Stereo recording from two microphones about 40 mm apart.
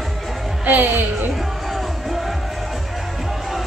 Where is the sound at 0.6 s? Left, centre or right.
Right.